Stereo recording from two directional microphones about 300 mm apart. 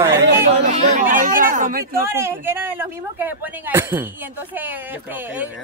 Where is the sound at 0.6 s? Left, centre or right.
Right.